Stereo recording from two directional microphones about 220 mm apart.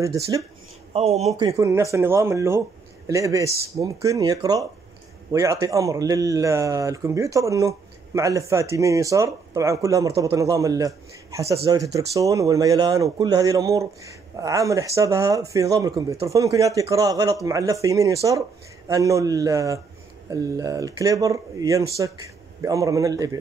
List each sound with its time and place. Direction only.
0.0 s speech: 15° right (ahead or behind)
0.9 s speech: 30° right (ahead or behind)
1.6 s speech: 15° right (ahead or behind)